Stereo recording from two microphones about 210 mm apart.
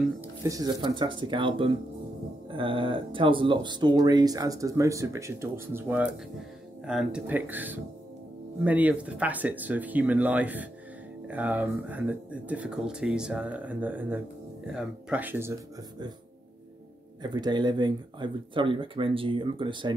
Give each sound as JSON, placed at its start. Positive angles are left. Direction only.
{"t": 0.2, "sound": "speech", "side_deg": -15}
{"t": 17.2, "sound": "speech", "side_deg": -20}